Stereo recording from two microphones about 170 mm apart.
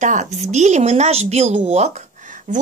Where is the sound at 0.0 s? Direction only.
45° right (ahead or behind).